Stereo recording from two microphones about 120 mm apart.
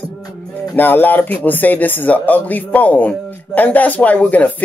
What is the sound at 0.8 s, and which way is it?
Speech, 15° left (ahead or behind).